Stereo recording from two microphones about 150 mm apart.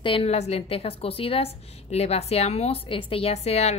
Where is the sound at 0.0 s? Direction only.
40° left (ahead or behind).